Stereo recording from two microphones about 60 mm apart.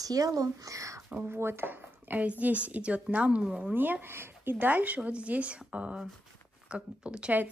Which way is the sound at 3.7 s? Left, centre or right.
Right.